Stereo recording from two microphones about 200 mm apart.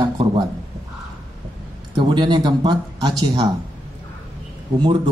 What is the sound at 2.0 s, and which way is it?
Speech, 25° right (ahead or behind).